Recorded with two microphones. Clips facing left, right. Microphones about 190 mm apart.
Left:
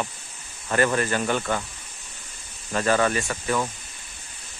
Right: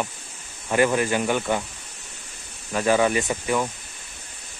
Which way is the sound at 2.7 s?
10° right (ahead or behind).